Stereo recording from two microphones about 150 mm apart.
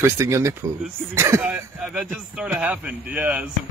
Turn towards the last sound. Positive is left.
turn(degrees=-10)  # may be behind; listen again after turning